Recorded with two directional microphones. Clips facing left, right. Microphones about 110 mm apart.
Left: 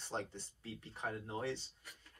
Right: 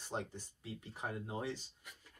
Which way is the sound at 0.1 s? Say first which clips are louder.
Even; 10° right (ahead or behind).